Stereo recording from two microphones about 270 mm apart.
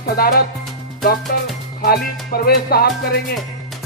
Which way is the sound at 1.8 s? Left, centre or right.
Left.